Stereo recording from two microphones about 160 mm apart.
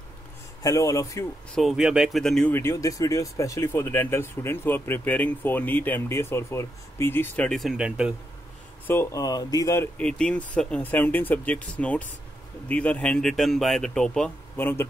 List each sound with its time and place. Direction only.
0.6 s speech: 20° left (ahead or behind)
1.5 s speech: centre (ahead or behind)
2.5 s speech: 15° left (ahead or behind); by 8.1 s 5° right (ahead or behind)
8.8 s speech: 15° left (ahead or behind)
9.9 s speech: 5° left (ahead or behind)